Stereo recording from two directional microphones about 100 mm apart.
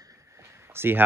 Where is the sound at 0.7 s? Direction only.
20° right (ahead or behind).